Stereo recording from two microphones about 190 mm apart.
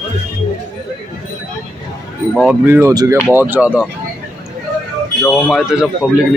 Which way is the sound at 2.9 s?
20° right (ahead or behind).